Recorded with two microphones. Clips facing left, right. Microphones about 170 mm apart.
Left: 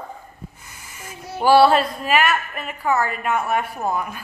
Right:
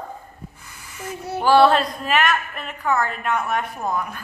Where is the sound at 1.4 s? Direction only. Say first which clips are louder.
Left 1 dB; 10° left (ahead or behind).